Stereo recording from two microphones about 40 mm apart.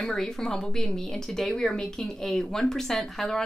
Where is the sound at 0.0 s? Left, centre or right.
Centre.